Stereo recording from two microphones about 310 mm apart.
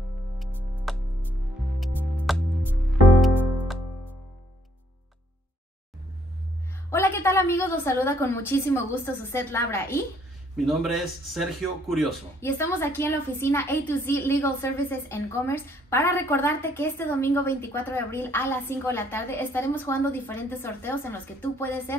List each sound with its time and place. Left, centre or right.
0.4 s music: centre
6.9 s a woman's voice: centre